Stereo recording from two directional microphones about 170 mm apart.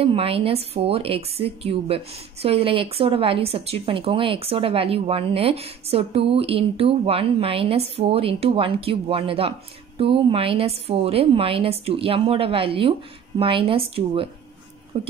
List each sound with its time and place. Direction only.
0.0 s speech: 35° right (ahead or behind)